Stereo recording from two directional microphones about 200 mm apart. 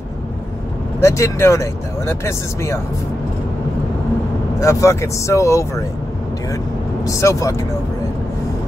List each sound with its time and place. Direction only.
1.0 s speech: 15° left (ahead or behind)
4.6 s speech: 15° left (ahead or behind)
7.1 s speech: 15° left (ahead or behind)